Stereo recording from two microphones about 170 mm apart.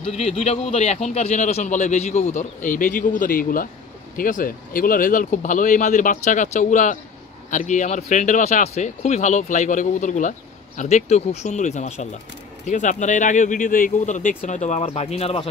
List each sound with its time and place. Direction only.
0.2 s a man's voice: 40° left (ahead or behind)